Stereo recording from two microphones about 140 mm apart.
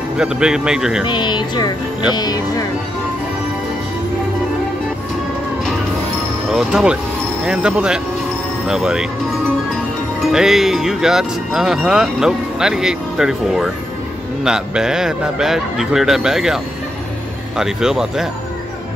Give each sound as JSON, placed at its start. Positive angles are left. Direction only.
{"t": 0.2, "sound": "speech", "side_deg": -5}
{"t": 1.0, "sound": "speech", "side_deg": 35}
{"t": 6.5, "sound": "speech", "side_deg": -5}
{"t": 10.3, "sound": "speech", "side_deg": -5}